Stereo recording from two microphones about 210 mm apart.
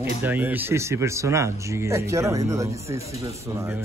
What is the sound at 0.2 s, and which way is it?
A man's voice, 10° right (ahead or behind).